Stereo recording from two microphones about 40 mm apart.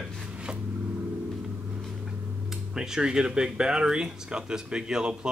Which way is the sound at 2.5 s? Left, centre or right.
Centre.